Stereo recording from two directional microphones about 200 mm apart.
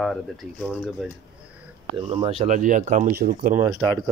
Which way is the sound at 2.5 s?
40° right (ahead or behind).